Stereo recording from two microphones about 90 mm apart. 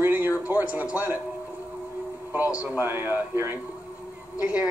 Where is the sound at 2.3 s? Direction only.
20° right (ahead or behind).